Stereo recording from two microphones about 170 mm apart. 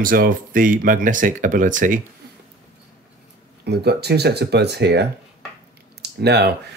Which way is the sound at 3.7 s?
75° right (ahead or behind).